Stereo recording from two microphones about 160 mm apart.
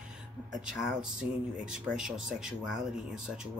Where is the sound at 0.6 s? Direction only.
5° right (ahead or behind).